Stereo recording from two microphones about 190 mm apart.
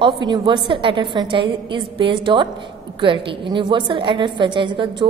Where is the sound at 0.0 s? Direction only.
25° right (ahead or behind).